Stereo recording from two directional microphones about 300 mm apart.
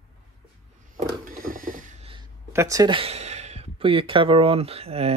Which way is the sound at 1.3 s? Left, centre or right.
Right.